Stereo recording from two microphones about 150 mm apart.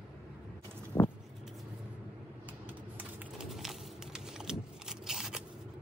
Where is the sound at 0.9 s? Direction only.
20° left (ahead or behind).